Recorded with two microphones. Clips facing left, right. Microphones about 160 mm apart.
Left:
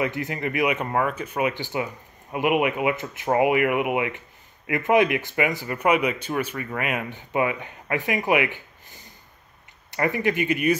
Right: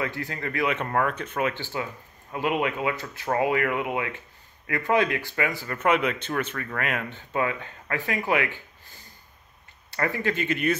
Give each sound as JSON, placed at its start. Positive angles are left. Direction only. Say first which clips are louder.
{"t": 0.0, "sound": "speech", "louder": "left 4 dB", "side_deg": 20}